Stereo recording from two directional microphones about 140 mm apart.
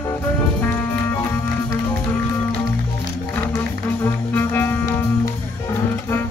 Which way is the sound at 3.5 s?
15° left (ahead or behind).